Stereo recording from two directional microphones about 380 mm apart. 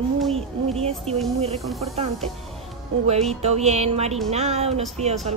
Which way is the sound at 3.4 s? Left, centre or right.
Centre.